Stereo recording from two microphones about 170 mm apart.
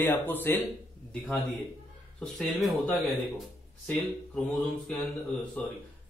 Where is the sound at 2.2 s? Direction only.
Centre (ahead or behind).